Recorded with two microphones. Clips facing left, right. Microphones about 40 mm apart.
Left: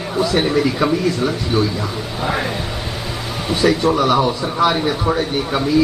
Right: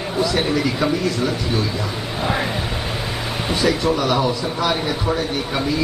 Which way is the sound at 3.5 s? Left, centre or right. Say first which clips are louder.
Left 4 dB; centre.